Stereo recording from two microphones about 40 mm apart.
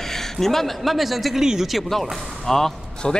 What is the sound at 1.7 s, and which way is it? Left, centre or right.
Speech, centre.